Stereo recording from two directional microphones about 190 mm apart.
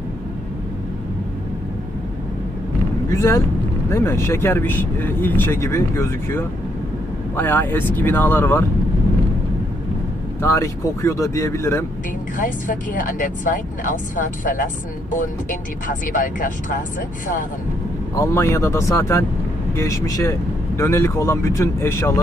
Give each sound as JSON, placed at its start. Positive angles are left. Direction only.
{"t": 3.1, "sound": "speech", "side_deg": 15}
{"t": 10.4, "sound": "speech", "side_deg": 15}
{"t": 12.4, "sound": "speech", "side_deg": 45}
{"t": 18.1, "sound": "speech", "side_deg": 15}